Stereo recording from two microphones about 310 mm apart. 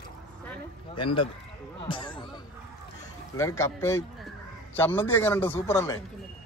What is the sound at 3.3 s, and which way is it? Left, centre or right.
Speech, centre.